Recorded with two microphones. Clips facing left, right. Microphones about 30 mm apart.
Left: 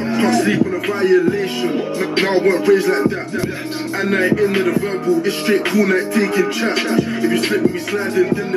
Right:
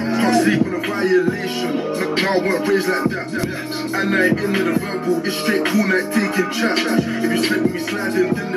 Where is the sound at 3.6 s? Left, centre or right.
Right.